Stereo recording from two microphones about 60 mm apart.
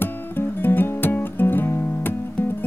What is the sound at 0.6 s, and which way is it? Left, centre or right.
Music, left.